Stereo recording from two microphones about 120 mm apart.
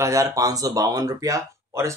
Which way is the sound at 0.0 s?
25° right (ahead or behind).